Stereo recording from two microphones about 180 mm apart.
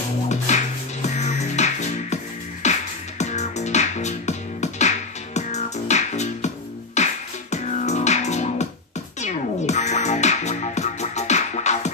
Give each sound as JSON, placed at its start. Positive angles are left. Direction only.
{"t": 0.5, "sound": "music", "side_deg": 40}